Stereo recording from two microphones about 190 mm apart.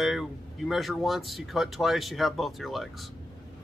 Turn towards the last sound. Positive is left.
turn(degrees=0)  # may be behind; listen again after turning